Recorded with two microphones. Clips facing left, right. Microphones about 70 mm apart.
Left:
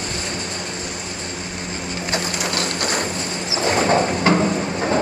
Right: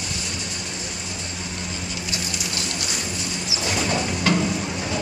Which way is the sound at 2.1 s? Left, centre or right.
Left.